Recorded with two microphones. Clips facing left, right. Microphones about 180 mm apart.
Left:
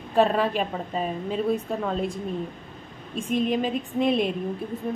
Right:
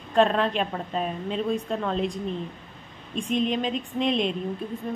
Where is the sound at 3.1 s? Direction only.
5° left (ahead or behind).